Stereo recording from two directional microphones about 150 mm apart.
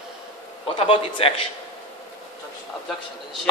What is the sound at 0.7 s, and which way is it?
Speech, 40° left (ahead or behind).